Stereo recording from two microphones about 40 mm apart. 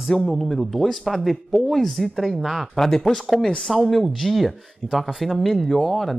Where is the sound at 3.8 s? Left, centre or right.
Centre.